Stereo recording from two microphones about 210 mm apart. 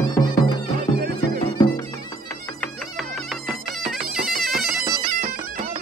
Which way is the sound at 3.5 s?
Centre (ahead or behind).